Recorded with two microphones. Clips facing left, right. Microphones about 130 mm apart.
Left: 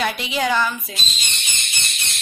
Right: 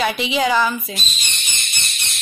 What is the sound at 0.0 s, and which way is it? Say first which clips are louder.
Speech: right 3 dB; centre (ahead or behind).